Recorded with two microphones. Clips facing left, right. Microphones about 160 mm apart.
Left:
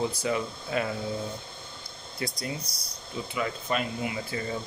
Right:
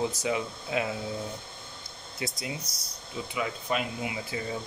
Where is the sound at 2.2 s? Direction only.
15° right (ahead or behind).